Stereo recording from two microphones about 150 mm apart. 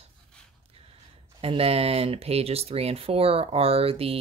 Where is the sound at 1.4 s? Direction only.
40° right (ahead or behind).